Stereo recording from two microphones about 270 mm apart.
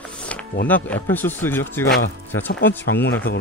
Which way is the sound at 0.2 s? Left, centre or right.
Centre.